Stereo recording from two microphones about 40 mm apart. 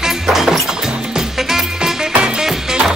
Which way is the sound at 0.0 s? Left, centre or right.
Centre.